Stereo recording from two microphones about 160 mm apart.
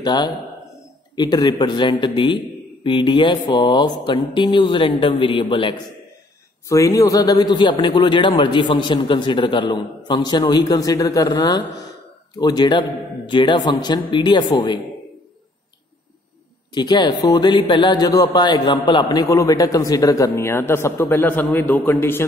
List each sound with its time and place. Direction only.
0.0 s a man's voice: 25° left (ahead or behind)
6.7 s a man's voice: 20° left (ahead or behind)
16.7 s a man's voice: 25° left (ahead or behind)